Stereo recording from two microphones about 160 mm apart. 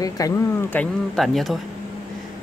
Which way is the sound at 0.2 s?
25° left (ahead or behind).